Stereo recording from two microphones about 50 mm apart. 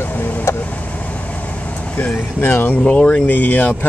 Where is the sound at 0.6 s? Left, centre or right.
Left.